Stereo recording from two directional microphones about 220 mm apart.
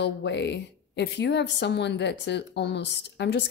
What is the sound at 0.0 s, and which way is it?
Speech, 50° left (ahead or behind).